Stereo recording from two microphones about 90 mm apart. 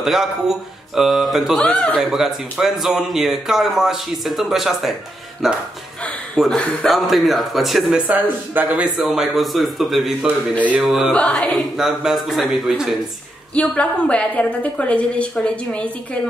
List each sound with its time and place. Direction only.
0.0 s speech: 5° right (ahead or behind)
1.6 s a woman's voice: 10° left (ahead or behind)
2.0 s speech: 5° right (ahead or behind)
8.1 s a man's voice: 15° right (ahead or behind)
8.9 s speech: centre (ahead or behind)
11.1 s a woman's voice: 10° left (ahead or behind)
11.7 s speech: 5° right (ahead or behind)
13.6 s a woman's voice: 15° left (ahead or behind)